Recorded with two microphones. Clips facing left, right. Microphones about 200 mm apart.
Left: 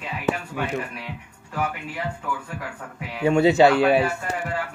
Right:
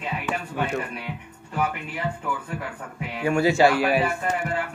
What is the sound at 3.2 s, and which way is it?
Speech, 25° left (ahead or behind).